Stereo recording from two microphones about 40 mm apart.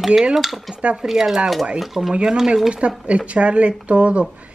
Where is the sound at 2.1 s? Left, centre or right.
Right.